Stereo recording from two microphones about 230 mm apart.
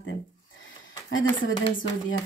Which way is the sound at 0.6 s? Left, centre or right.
Left.